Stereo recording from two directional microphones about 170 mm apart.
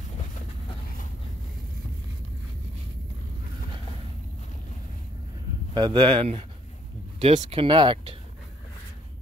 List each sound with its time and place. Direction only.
5.8 s speech: 25° right (ahead or behind)